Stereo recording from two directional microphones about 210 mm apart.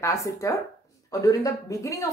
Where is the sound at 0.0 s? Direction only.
15° left (ahead or behind).